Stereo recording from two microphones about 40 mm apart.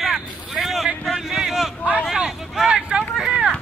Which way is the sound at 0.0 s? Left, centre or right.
Centre.